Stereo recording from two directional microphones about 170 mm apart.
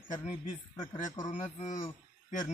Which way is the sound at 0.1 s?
45° left (ahead or behind).